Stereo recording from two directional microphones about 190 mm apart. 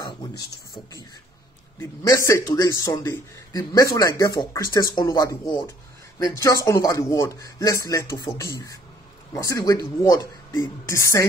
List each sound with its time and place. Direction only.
1.8 s a man's voice: 15° left (ahead or behind)